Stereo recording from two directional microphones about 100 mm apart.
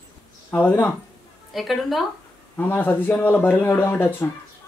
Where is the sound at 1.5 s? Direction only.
Centre (ahead or behind).